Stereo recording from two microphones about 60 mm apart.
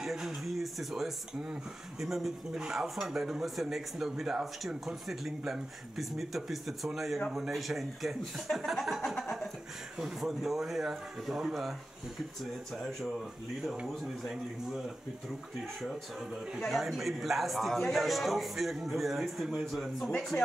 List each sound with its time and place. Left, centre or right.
0.0 s speech: centre
9.1 s a sound: centre
9.9 s speech: centre
16.5 s speech: centre
20.3 s speech: left